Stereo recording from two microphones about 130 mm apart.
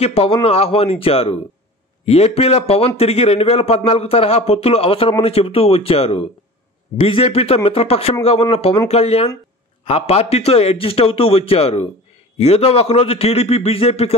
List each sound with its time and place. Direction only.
0.0 s speech: 50° left (ahead or behind)